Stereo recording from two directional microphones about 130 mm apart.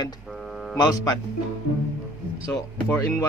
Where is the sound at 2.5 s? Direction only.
15° left (ahead or behind).